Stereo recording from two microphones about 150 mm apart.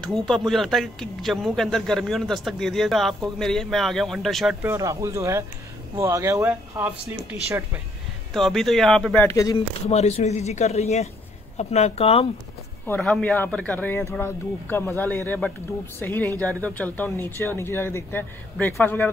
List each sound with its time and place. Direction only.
0.5 s a man's voice: centre (ahead or behind)
4.6 s speech: 20° right (ahead or behind)
8.3 s a man's voice: centre (ahead or behind)
9.8 s speech: 45° left (ahead or behind)
13.0 s speech: 5° left (ahead or behind)